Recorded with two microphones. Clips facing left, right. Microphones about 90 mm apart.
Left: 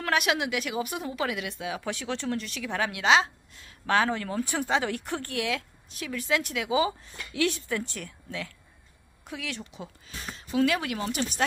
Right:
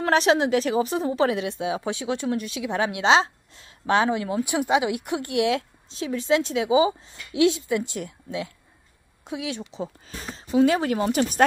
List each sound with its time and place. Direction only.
0.0 s speech: 30° right (ahead or behind)
10.0 s speech: 35° right (ahead or behind)